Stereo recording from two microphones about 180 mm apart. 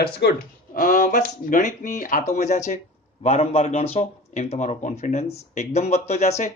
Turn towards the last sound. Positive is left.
turn(degrees=40)  # may be behind; listen again after turning